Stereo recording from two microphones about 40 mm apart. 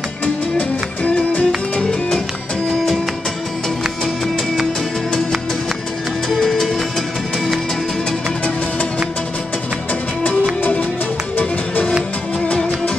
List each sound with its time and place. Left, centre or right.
0.2 s music: left
2.7 s music: centre
6.2 s music: centre
10.6 s music: left
12.4 s music: left